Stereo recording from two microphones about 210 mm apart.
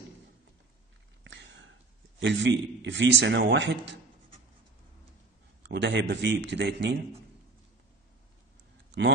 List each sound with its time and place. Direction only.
1.2 s a sound: 60° right (ahead or behind)
2.1 s a man's voice: 60° right (ahead or behind)
5.6 s a man's voice: 55° right (ahead or behind)